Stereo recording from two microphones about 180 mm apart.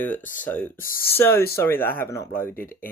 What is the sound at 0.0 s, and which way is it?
Speech, 10° left (ahead or behind).